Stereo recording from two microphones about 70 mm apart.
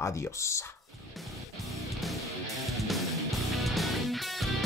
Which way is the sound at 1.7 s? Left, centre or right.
Centre.